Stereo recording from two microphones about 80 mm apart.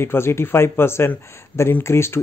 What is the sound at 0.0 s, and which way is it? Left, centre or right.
Speech, left.